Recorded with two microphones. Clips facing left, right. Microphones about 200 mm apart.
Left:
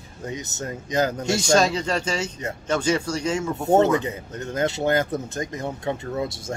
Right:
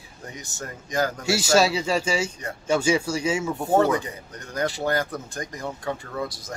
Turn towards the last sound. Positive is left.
turn(degrees=25)  # may be behind; listen again after turning